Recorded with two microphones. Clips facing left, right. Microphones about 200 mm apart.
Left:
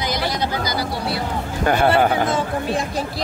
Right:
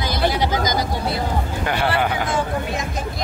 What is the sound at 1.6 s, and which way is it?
Speech, 45° left (ahead or behind).